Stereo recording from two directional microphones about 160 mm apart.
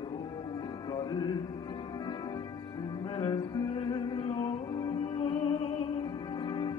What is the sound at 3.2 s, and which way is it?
Music, 25° left (ahead or behind).